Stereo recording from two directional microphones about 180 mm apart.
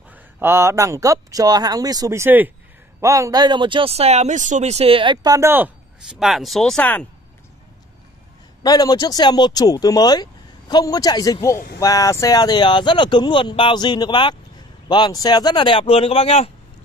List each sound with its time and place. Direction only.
0.1 s speech: 10° right (ahead or behind); by 7.1 s 10° left (ahead or behind)
8.6 s speech: 20° left (ahead or behind)